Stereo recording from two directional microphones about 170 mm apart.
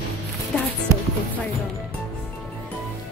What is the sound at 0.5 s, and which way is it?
Speech, 5° left (ahead or behind).